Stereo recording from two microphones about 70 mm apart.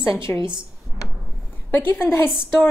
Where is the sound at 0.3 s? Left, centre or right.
Left.